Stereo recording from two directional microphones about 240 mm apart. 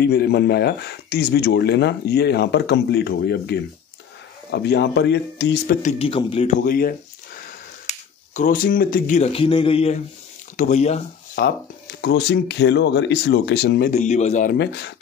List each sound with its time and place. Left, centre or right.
0.0 s speech: left
5.8 s speech: left
6.6 s speech: left
8.4 s speech: left
12.0 s speech: left